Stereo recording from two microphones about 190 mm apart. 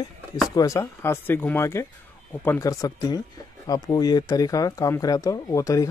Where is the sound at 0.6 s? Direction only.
15° left (ahead or behind).